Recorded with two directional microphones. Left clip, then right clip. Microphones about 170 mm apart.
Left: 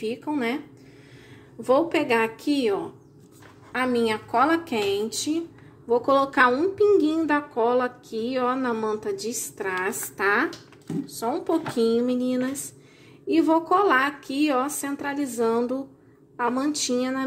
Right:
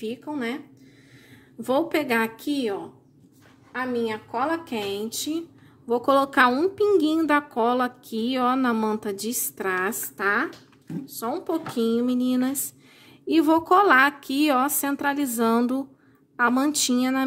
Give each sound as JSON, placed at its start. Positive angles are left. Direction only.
{"t": 0.0, "sound": "speech", "side_deg": -20}
{"t": 1.6, "sound": "speech", "side_deg": -40}
{"t": 3.7, "sound": "a woman's voice", "side_deg": 5}
{"t": 5.9, "sound": "a woman's voice", "side_deg": -40}